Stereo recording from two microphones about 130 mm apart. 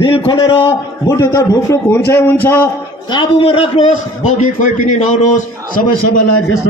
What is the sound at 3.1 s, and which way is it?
Speech, 40° left (ahead or behind).